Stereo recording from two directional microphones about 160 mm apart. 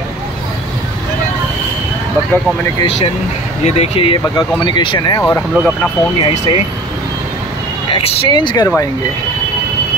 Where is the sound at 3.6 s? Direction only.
40° left (ahead or behind).